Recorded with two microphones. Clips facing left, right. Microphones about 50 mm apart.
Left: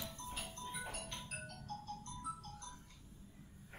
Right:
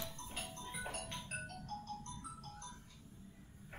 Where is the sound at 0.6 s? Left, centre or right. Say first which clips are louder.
Even; right.